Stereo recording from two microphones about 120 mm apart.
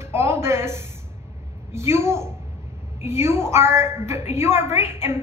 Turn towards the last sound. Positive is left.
turn(degrees=-20)  # may be behind; listen again after turning